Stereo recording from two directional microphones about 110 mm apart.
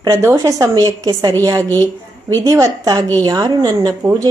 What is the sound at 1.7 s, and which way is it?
Speech, 20° left (ahead or behind).